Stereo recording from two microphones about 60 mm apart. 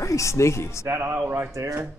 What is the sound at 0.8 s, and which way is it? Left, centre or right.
Speech, right.